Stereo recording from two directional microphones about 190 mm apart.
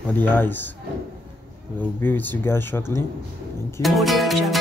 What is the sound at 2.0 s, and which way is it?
Speech, 10° left (ahead or behind).